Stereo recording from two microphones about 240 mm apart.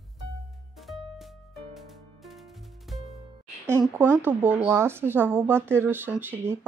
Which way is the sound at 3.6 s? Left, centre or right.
Centre.